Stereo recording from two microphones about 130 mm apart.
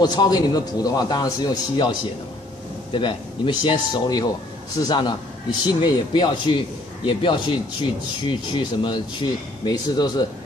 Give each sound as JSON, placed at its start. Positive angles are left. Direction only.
{"t": 0.0, "sound": "speech", "side_deg": 30}